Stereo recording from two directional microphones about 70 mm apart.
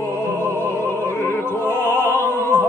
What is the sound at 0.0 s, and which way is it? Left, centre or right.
Opera, left.